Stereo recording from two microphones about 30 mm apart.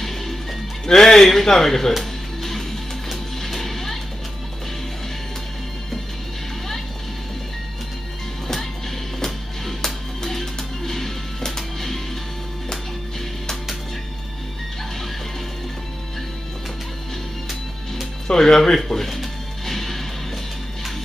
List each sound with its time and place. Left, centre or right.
0.0 s music: centre
1.0 s speech: centre
3.1 s music: centre
9.2 s music: centre
18.2 s speech: left
18.9 s music: centre